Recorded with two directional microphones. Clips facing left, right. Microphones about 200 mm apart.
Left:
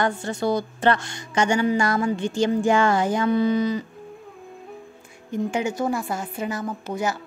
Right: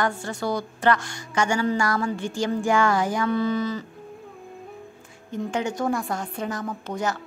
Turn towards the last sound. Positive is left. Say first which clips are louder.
# left 1 dB
turn(degrees=10)  # may be behind; listen again after turning